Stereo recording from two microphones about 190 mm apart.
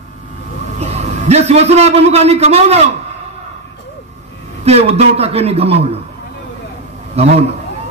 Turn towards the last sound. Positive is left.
turn(degrees=-35)  # may be behind; listen again after turning